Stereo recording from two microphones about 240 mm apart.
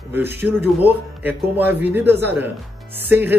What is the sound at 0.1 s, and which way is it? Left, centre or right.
Speech, centre.